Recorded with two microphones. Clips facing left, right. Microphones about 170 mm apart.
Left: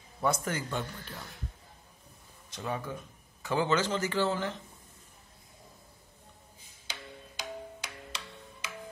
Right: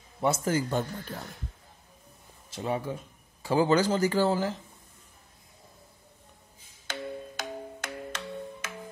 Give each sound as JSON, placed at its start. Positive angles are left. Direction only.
{"t": 0.2, "sound": "speech", "side_deg": -30}
{"t": 2.5, "sound": "speech", "side_deg": -25}
{"t": 6.9, "sound": "music", "side_deg": -50}